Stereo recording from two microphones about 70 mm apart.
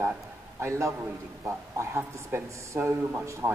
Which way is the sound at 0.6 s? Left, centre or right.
Right.